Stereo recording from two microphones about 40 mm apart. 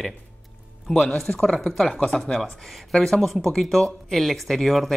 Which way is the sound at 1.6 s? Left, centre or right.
Centre.